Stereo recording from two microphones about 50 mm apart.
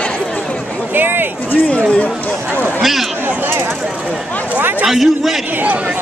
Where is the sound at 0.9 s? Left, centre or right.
Right.